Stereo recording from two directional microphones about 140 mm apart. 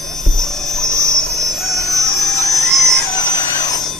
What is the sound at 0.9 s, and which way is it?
Jet engine, 20° right (ahead or behind).